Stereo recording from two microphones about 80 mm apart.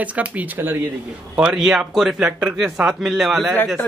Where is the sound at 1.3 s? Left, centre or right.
Centre.